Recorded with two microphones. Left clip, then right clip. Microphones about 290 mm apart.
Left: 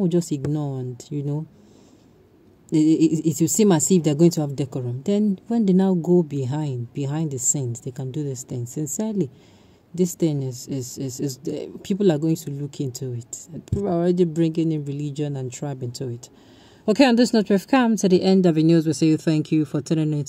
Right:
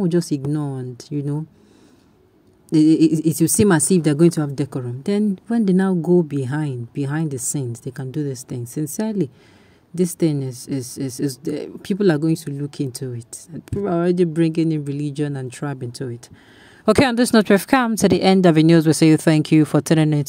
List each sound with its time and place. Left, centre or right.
0.0 s speech: right
2.7 s speech: right
7.3 s a woman's voice: right
7.8 s speech: right